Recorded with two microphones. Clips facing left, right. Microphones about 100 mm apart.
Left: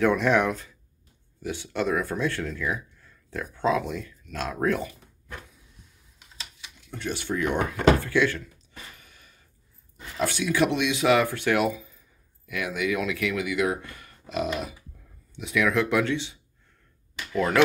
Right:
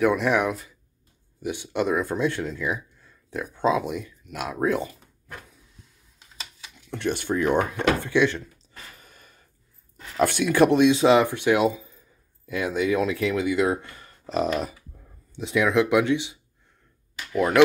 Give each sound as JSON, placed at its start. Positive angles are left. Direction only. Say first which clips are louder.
{"t": 0.0, "sound": "speech", "louder": "even", "side_deg": -10}
{"t": 6.9, "sound": "speech", "louder": "right 5 dB", "side_deg": -60}
{"t": 7.3, "sound": "speech", "louder": "right 3 dB", "side_deg": -35}
{"t": 8.0, "sound": "speech", "louder": "right 2 dB", "side_deg": -20}
{"t": 8.9, "sound": "gasp", "louder": "right 3 dB", "side_deg": -40}
{"t": 10.1, "sound": "speech", "louder": "right 5 dB", "side_deg": -55}
{"t": 15.3, "sound": "speech", "louder": "right 3 dB", "side_deg": -25}